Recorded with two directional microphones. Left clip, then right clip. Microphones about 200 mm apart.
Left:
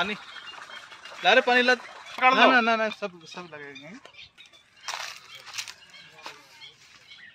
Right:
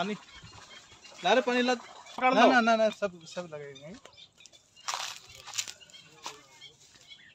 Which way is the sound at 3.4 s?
60° right (ahead or behind).